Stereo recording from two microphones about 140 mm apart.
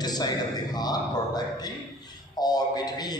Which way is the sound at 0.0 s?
30° left (ahead or behind).